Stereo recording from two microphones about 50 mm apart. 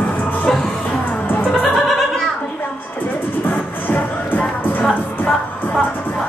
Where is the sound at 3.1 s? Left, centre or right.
Left.